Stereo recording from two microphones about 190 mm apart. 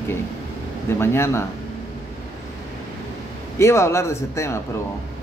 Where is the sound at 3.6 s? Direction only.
15° left (ahead or behind).